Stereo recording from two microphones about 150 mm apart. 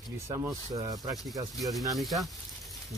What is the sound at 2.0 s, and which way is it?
Speech, centre (ahead or behind).